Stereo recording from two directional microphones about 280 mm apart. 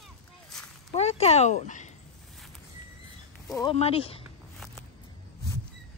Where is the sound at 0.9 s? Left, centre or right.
Left.